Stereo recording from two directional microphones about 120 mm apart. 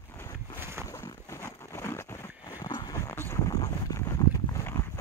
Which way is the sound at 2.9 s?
20° left (ahead or behind).